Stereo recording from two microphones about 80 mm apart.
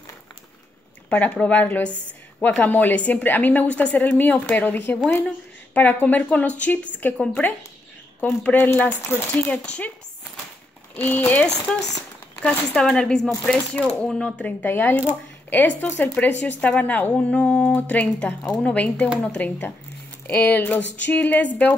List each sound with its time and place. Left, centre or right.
1.1 s a woman's voice: centre
8.5 s a woman's voice: left
11.0 s a woman's voice: left
11.4 s speech: centre
14.4 s a woman's voice: left